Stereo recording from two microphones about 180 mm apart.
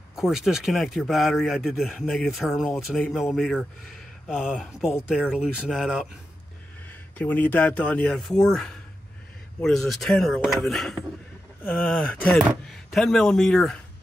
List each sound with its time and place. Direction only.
0.1 s speech: centre (ahead or behind)
6.9 s speech: 10° left (ahead or behind)